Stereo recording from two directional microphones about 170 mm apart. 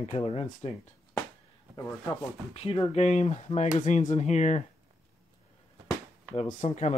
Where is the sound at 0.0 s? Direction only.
35° left (ahead or behind).